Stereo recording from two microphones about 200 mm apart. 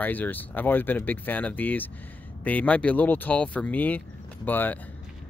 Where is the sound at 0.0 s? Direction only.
10° left (ahead or behind).